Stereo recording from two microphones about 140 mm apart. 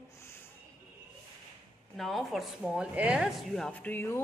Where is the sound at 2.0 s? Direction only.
Centre (ahead or behind).